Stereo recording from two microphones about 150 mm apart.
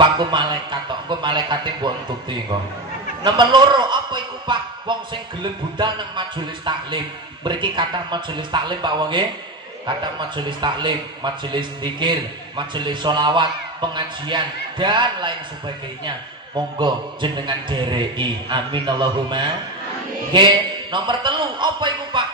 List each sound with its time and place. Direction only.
0.0 s a man's voice: 30° right (ahead or behind)
16.5 s a man's voice: 30° right (ahead or behind)